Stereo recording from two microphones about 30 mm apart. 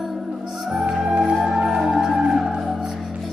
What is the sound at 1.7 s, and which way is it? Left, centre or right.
Music, centre.